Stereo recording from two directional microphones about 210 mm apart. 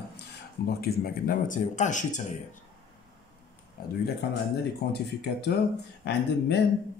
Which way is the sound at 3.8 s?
45° left (ahead or behind).